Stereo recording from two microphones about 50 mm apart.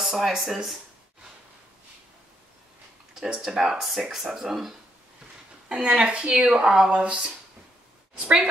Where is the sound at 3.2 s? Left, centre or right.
Centre.